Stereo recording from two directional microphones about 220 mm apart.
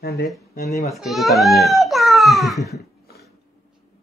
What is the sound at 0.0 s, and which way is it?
Speech, 45° left (ahead or behind).